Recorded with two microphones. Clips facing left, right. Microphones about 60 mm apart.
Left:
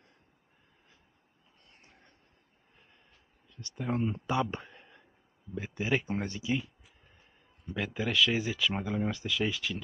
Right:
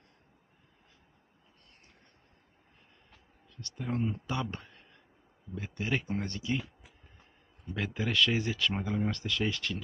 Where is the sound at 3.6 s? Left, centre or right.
Centre.